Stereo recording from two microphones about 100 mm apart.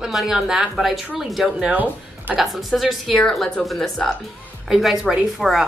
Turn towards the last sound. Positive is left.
turn(degrees=0)  # may be behind; listen again after turning